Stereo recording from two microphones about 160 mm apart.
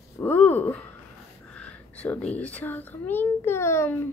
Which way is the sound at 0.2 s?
10° left (ahead or behind).